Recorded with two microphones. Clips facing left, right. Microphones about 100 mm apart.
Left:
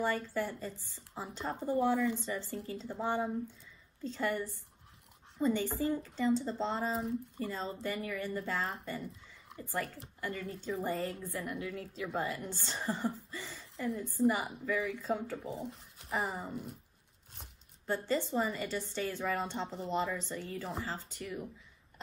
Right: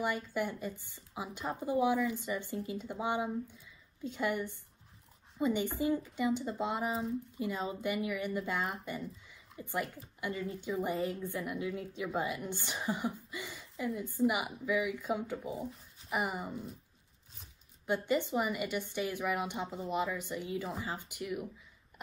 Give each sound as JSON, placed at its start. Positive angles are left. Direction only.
{"t": 0.0, "sound": "a woman's voice", "side_deg": -15}
{"t": 17.8, "sound": "a woman's voice", "side_deg": -15}